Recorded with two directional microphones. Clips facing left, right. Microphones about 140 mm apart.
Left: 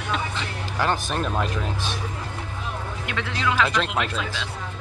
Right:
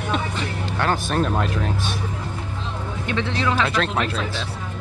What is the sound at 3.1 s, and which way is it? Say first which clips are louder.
Speech: right 3 dB; 25° right (ahead or behind).